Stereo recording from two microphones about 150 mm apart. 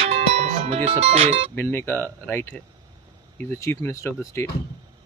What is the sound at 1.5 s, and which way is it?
Speech, 15° left (ahead or behind).